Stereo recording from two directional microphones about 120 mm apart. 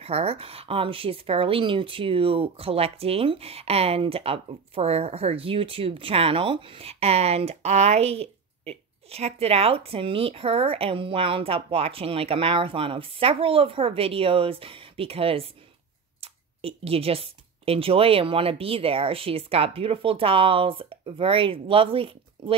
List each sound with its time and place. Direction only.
0.0 s speech: 55° right (ahead or behind)